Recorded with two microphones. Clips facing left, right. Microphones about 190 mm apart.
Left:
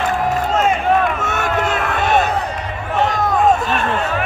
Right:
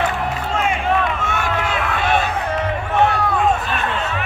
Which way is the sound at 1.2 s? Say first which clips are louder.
Left 3 dB; 45° left (ahead or behind).